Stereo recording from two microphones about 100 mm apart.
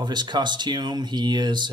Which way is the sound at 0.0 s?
50° right (ahead or behind).